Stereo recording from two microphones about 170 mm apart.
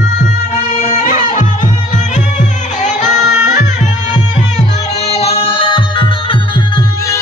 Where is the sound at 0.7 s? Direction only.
45° left (ahead or behind).